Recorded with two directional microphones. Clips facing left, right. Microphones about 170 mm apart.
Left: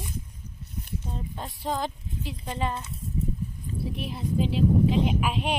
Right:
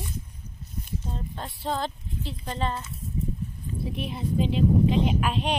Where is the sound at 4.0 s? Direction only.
Centre (ahead or behind).